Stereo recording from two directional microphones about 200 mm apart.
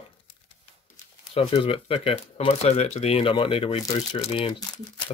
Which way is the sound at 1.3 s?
30° left (ahead or behind).